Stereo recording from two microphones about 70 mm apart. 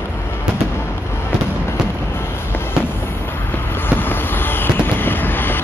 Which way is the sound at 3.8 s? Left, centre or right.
Left.